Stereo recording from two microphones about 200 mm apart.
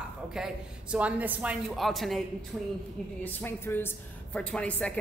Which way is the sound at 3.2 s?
10° left (ahead or behind).